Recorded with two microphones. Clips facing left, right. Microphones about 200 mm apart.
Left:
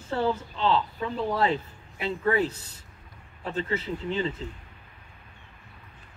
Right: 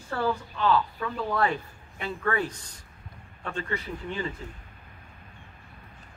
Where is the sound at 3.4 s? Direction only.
25° left (ahead or behind).